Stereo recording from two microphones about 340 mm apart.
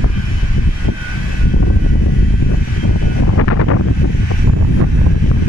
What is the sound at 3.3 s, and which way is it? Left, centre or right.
Vehicle, left.